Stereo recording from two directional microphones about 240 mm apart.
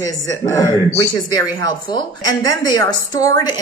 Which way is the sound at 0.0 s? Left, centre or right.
Centre.